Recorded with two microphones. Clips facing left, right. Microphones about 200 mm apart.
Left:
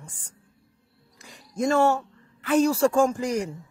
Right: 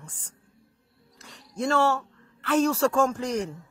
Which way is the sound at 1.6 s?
15° left (ahead or behind).